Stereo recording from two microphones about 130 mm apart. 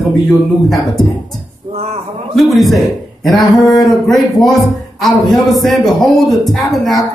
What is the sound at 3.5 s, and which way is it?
Speech, 30° left (ahead or behind).